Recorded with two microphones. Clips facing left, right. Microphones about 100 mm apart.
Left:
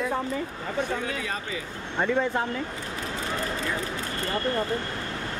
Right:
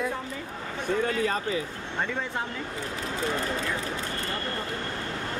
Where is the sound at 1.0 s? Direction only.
45° right (ahead or behind).